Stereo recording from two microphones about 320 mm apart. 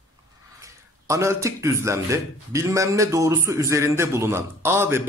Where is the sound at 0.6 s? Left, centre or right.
Centre.